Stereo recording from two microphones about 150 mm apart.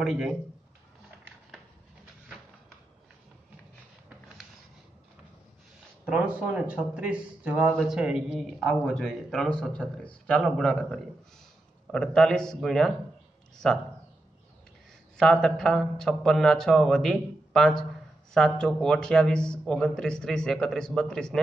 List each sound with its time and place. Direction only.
0.0 s a man's voice: centre (ahead or behind)
6.0 s speech: 5° right (ahead or behind)
15.1 s speech: 5° left (ahead or behind)